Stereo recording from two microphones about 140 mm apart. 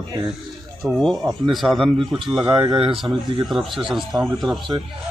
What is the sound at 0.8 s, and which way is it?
Speech, centre (ahead or behind).